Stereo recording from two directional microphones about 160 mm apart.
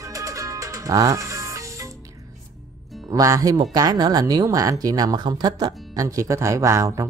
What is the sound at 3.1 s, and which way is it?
Speech, 20° right (ahead or behind).